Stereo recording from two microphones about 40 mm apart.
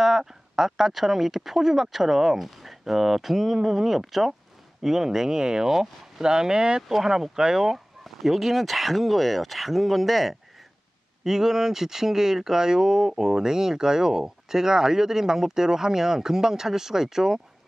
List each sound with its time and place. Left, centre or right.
0.0 s speech: centre
6.2 s speech: centre